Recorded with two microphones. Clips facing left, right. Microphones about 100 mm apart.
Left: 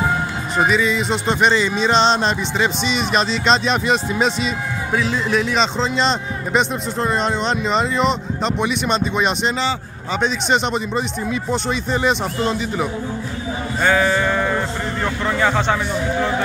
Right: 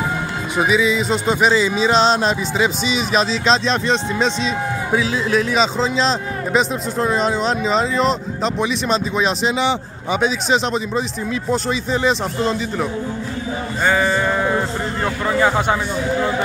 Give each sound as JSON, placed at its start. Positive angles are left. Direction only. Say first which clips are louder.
{"t": 0.6, "sound": "a man's voice", "louder": "right 1 dB", "side_deg": -5}
{"t": 13.8, "sound": "sheep", "louder": "even", "side_deg": -5}